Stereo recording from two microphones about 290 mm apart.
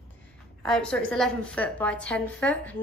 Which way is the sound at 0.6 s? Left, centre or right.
Centre.